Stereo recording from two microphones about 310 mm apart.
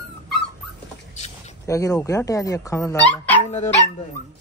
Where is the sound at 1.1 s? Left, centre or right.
Left.